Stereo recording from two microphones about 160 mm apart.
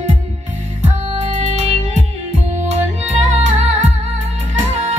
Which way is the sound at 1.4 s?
40° right (ahead or behind).